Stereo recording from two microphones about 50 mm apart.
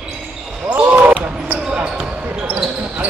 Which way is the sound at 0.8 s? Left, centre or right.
Right.